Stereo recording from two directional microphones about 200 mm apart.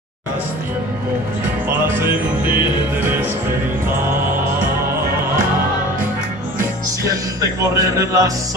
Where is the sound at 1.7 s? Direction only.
10° right (ahead or behind).